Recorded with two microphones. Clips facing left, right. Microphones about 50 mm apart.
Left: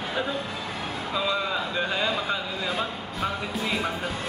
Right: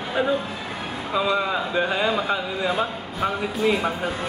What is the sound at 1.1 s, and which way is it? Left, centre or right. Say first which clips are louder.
Speech: right 5 dB; centre.